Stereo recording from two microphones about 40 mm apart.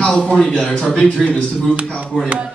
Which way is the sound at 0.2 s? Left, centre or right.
Centre.